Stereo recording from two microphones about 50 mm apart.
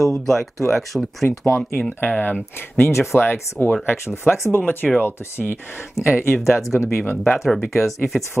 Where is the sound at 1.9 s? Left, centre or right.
Left.